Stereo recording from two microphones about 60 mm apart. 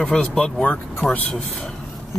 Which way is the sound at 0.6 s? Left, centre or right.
Left.